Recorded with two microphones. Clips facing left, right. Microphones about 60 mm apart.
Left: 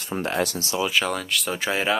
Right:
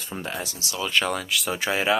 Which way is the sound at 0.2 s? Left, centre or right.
Left.